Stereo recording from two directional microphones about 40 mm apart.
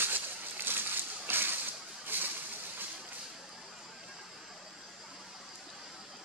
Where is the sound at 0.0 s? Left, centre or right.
Right.